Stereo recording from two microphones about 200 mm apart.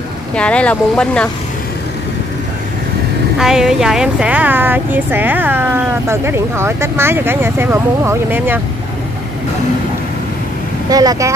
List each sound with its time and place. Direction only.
0.4 s speech: 5° left (ahead or behind)
3.3 s speech: centre (ahead or behind)
10.9 s speech: 20° right (ahead or behind)